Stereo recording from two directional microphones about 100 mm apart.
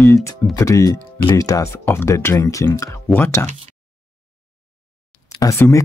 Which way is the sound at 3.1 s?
20° left (ahead or behind).